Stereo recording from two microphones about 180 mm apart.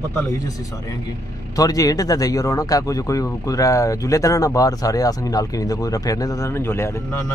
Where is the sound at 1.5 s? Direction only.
20° left (ahead or behind).